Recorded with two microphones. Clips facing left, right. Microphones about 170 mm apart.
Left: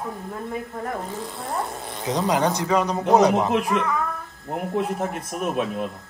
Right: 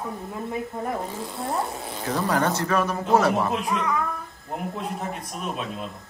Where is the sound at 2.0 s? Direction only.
20° left (ahead or behind).